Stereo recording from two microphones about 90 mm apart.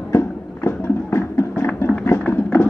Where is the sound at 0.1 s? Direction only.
35° left (ahead or behind).